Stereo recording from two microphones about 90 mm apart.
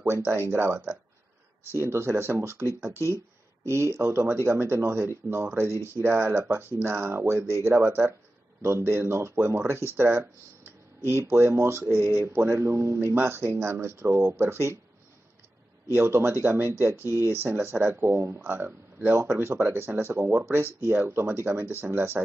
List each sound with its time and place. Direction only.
0.0 s speech: 25° right (ahead or behind)
15.9 s speech: 25° right (ahead or behind)